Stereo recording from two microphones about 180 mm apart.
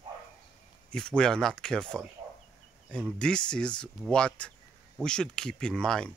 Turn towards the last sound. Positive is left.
turn(degrees=5)  # may be behind; listen again after turning